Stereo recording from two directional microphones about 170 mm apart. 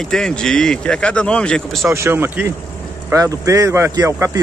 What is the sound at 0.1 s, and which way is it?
Speech, 5° left (ahead or behind).